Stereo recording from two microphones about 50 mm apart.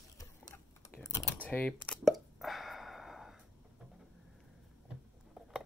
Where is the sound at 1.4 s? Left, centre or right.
Left.